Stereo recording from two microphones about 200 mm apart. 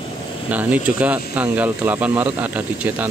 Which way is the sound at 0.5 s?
5° right (ahead or behind).